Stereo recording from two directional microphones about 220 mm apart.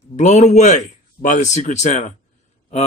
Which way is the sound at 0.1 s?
30° left (ahead or behind).